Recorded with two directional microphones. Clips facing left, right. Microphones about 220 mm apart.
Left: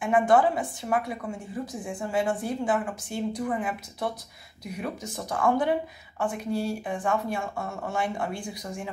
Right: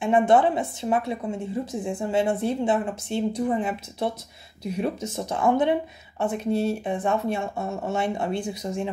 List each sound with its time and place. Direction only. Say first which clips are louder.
0.0 s speech: right 2 dB; 25° right (ahead or behind)